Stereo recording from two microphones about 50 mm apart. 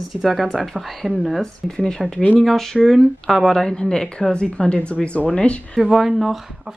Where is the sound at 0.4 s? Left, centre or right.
Centre.